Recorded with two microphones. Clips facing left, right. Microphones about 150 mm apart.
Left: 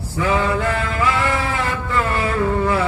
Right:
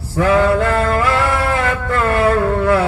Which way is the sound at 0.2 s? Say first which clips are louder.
Right 6 dB; 60° right (ahead or behind).